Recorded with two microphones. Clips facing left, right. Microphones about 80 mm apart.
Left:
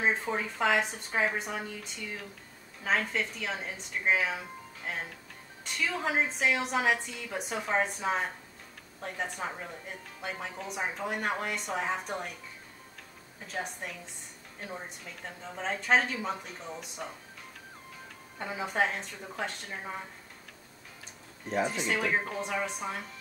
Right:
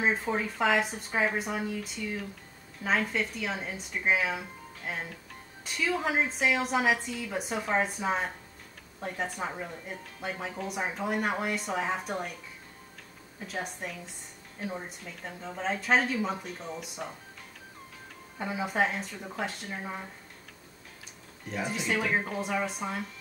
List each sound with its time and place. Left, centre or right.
0.0 s speech: centre
13.5 s speech: centre
18.4 s speech: centre
21.6 s speech: centre